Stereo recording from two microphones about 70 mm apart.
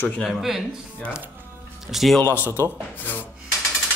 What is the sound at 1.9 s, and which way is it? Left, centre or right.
Speech, centre.